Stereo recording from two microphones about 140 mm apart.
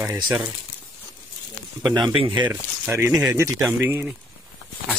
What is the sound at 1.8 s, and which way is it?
Speech, 30° right (ahead or behind).